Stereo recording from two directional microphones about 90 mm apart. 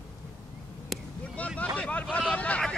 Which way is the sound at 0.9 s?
Centre (ahead or behind).